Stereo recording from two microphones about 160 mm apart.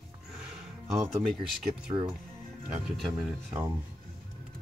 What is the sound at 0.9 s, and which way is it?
Speech, centre (ahead or behind).